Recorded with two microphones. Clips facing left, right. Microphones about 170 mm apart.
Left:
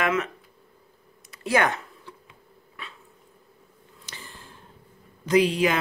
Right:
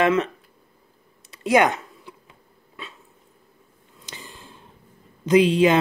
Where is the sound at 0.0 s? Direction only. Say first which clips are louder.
Right 6 dB; 30° right (ahead or behind).